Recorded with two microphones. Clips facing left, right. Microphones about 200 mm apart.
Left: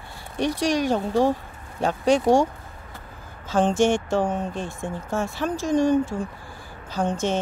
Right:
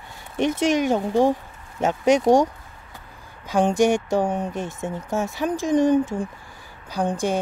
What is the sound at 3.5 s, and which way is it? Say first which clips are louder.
A woman's voice: right 1 dB; 15° right (ahead or behind).